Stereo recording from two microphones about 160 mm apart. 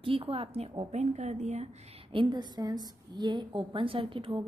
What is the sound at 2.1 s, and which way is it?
A woman's voice, 30° right (ahead or behind).